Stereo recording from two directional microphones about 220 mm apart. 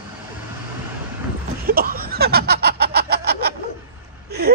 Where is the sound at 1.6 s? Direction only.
40° right (ahead or behind).